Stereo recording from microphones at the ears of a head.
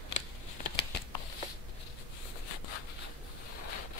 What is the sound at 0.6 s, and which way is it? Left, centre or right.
Shuffling cards, left.